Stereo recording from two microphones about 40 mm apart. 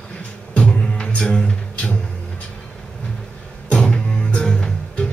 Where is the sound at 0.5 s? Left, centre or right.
Left.